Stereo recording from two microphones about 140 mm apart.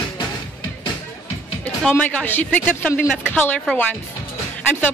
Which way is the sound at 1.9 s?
10° left (ahead or behind).